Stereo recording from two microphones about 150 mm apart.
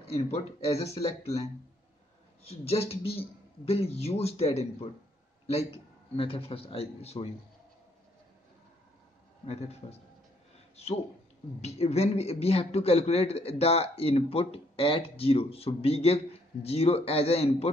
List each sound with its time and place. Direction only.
0.0 s speech: 45° left (ahead or behind)
2.6 s a man's voice: 40° left (ahead or behind)
9.5 s speech: 45° left (ahead or behind)
11.6 s a man's voice: 45° left (ahead or behind)